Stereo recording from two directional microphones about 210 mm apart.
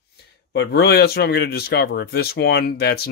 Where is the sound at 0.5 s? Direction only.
55° left (ahead or behind).